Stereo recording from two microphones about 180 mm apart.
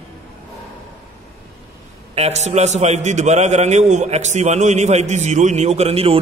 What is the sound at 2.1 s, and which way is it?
A man's voice, 35° right (ahead or behind).